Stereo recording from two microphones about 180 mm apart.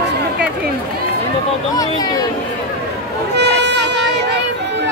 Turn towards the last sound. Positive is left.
turn(degrees=-70)  # may be behind; listen again after turning